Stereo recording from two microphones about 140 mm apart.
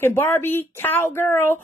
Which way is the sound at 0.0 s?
15° left (ahead or behind).